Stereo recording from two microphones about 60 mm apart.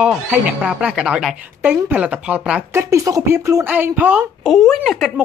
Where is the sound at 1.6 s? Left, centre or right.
Right.